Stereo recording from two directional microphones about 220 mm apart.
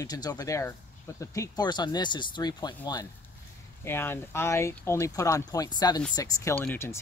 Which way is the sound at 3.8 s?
10° left (ahead or behind).